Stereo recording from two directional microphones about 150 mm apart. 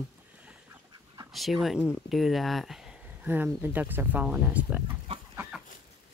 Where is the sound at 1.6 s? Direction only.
5° right (ahead or behind).